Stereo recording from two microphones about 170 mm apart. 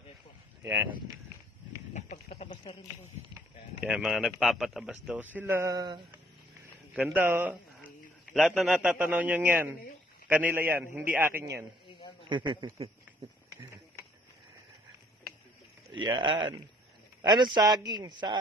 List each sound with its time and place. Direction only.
2.0 s speech: 40° left (ahead or behind)
3.8 s a man's voice: centre (ahead or behind); by 6.2 s 20° right (ahead or behind)
7.0 s a man's voice: 10° right (ahead or behind)
12.3 s a man's voice: 30° right (ahead or behind)
16.0 s a man's voice: 30° right (ahead or behind)